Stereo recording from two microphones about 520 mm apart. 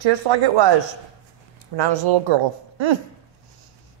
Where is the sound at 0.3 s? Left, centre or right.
Right.